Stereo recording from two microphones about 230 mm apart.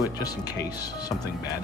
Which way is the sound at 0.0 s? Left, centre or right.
Centre.